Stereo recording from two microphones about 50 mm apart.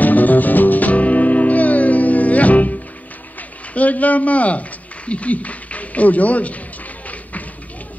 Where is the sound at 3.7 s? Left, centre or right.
Left.